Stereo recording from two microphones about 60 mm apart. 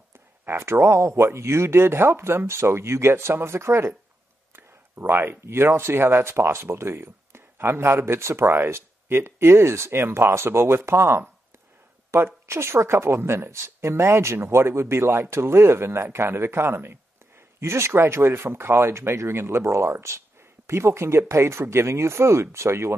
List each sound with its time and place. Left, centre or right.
0.5 s speech: right